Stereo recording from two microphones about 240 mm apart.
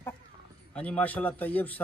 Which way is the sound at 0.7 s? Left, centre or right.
Centre.